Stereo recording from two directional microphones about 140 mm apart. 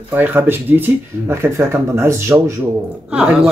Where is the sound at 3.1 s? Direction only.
5° right (ahead or behind).